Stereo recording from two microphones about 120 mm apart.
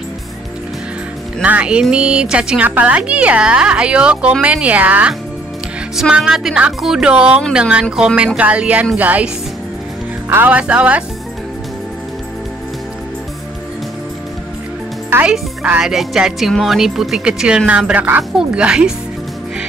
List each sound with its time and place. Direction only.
1.4 s a woman's voice: 10° right (ahead or behind)
10.3 s a woman's voice: 15° right (ahead or behind)
15.0 s speech: 15° right (ahead or behind)